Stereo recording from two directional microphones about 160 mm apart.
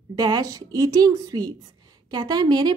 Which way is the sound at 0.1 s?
25° right (ahead or behind).